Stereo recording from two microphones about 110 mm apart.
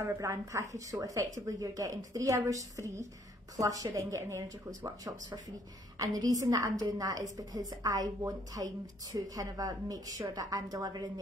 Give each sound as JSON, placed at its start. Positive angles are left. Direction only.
{"t": 0.0, "sound": "a woman's voice", "side_deg": -25}